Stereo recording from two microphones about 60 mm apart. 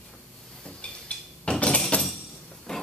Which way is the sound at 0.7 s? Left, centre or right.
Centre.